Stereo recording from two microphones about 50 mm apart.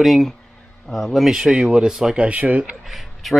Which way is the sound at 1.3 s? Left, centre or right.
Centre.